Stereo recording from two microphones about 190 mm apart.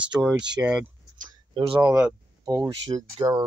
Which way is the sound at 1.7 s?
20° right (ahead or behind).